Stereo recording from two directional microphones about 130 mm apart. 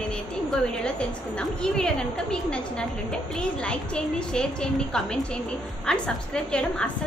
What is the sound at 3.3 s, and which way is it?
A woman's voice, 5° left (ahead or behind).